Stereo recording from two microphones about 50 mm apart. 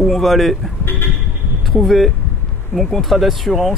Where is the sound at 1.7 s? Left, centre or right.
Centre.